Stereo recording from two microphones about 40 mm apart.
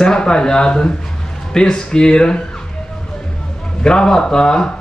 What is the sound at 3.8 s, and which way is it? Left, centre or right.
Speech, centre.